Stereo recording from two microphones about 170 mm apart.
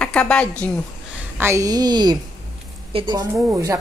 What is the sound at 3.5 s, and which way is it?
Speech, 15° right (ahead or behind).